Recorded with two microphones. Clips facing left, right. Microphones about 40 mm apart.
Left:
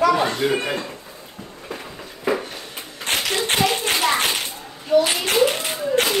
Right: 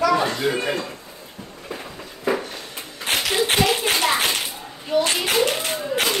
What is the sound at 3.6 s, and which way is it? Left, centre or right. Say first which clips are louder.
Tap: even; centre.